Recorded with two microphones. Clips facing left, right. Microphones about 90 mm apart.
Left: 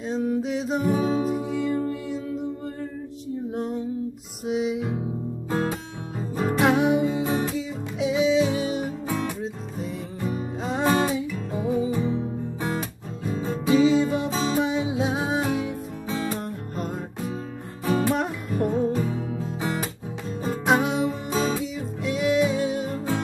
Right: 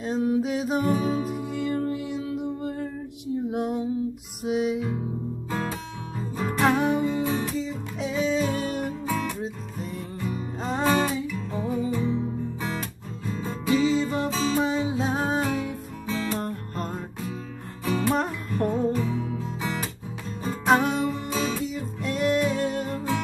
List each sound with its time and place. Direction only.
0.0 s music: 5° right (ahead or behind)
1.0 s music: 30° left (ahead or behind)
1.5 s music: centre (ahead or behind)
3.5 s female singing: 10° right (ahead or behind)
4.5 s music: centre (ahead or behind)
5.5 s music: 25° left (ahead or behind); by 8.9 s 5° left (ahead or behind)
9.0 s music: 25° left (ahead or behind)
9.4 s music: centre (ahead or behind); by 12.2 s 20° left (ahead or behind)
13.2 s music: 20° left (ahead or behind)
18.0 s music: 10° left (ahead or behind)
19.0 s music: 35° left (ahead or behind)
20.6 s music: 5° left (ahead or behind)